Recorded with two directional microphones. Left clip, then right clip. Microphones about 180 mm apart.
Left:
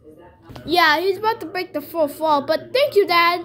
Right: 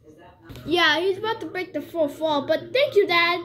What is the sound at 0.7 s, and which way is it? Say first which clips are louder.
Speech: left 4 dB; 30° left (ahead or behind).